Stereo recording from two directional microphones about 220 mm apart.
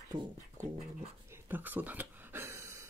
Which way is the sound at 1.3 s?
10° right (ahead or behind).